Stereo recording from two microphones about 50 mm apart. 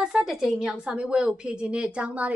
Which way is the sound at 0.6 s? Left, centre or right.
Centre.